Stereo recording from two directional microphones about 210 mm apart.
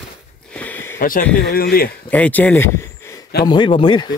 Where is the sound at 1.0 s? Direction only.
40° left (ahead or behind).